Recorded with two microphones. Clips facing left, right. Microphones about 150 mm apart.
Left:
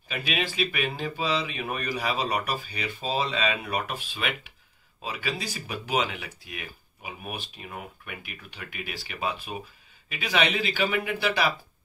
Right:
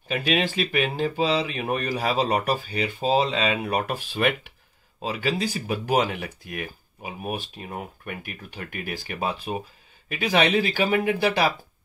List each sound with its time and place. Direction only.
0.1 s speech: 50° right (ahead or behind)